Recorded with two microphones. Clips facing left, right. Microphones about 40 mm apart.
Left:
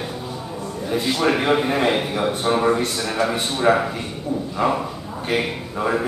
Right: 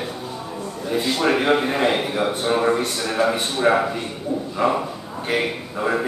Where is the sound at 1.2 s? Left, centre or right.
Centre.